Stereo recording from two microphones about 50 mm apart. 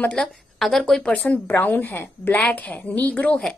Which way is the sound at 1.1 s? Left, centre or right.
Left.